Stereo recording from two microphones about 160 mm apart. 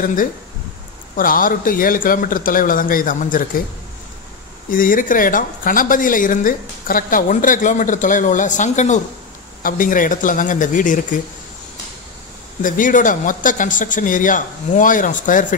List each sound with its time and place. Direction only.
0.0 s speech: 60° left (ahead or behind)
4.6 s speech: 60° left (ahead or behind)
9.6 s speech: 60° left (ahead or behind)
12.6 s speech: 55° left (ahead or behind)